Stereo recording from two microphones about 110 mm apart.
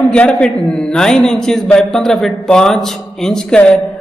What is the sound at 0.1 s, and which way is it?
A man's voice, 10° left (ahead or behind).